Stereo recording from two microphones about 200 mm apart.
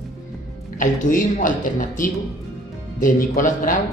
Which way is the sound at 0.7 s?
40° left (ahead or behind).